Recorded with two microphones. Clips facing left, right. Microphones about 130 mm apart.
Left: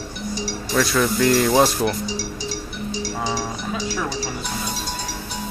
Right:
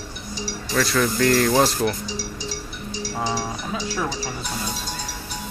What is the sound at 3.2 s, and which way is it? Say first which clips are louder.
Music: right 3 dB; 5° right (ahead or behind).